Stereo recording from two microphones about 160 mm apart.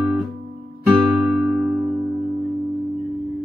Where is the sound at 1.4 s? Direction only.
Centre (ahead or behind).